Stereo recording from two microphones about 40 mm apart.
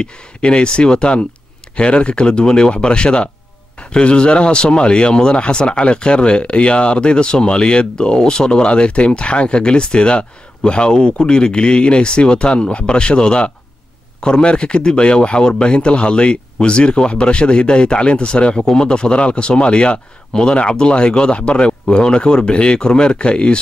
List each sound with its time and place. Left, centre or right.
0.0 s speech: left